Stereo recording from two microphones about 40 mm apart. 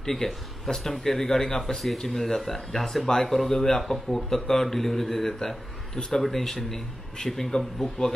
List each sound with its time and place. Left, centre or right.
0.0 s speech: centre